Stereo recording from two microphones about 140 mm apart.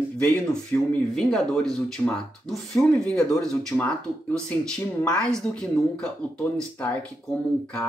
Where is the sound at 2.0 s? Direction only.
15° left (ahead or behind).